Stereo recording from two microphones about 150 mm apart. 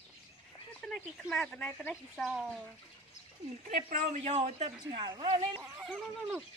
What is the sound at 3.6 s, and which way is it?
Speech, 50° right (ahead or behind).